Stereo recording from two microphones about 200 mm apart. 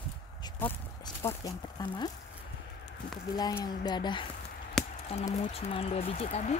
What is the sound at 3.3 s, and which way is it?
Speech, 20° left (ahead or behind).